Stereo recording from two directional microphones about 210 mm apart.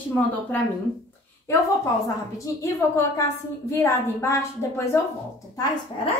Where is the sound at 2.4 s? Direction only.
15° left (ahead or behind).